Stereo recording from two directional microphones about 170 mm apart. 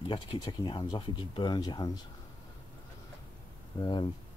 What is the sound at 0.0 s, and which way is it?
Speech, 30° left (ahead or behind).